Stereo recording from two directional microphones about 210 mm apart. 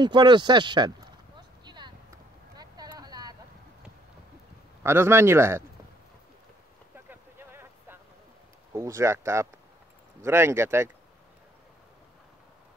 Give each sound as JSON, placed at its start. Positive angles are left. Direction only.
{"t": 0.0, "sound": "speech", "side_deg": -20}
{"t": 1.6, "sound": "a sound", "side_deg": -20}
{"t": 2.5, "sound": "vehicle", "side_deg": -20}
{"t": 4.8, "sound": "speech", "side_deg": -10}
{"t": 7.1, "sound": "a sound", "side_deg": -10}
{"t": 8.7, "sound": "speech", "side_deg": -15}